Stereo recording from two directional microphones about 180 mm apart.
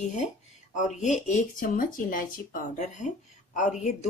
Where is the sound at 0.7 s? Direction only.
40° left (ahead or behind).